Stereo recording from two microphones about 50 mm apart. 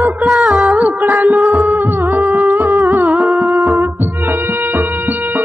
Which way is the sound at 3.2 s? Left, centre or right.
Centre.